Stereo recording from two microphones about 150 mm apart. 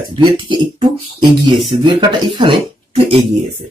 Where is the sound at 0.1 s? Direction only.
35° right (ahead or behind).